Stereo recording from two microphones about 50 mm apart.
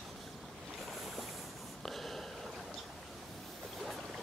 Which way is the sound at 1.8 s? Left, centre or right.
Centre.